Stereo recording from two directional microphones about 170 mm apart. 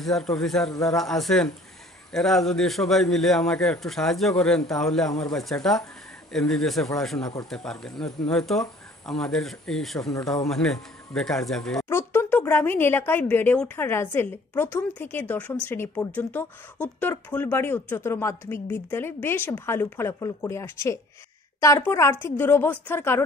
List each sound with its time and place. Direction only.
0.0 s a man's voice: centre (ahead or behind)
11.9 s speech: 15° left (ahead or behind)